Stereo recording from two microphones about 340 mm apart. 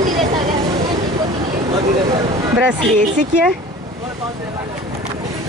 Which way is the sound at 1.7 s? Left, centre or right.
Centre.